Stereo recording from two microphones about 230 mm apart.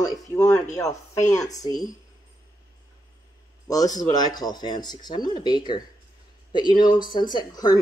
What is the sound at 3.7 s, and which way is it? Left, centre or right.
Speech, centre.